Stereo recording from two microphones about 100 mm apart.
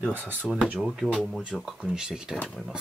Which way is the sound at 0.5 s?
5° right (ahead or behind).